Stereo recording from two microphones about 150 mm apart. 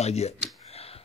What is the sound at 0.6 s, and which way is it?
Typewriter, 40° left (ahead or behind).